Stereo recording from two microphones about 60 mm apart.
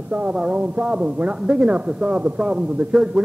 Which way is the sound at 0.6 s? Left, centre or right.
Right.